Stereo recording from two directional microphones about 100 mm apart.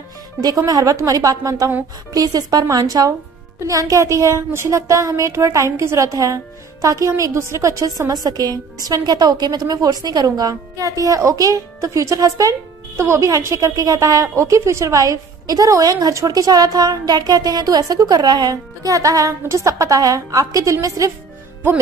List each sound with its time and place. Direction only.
0.4 s speech: 40° right (ahead or behind)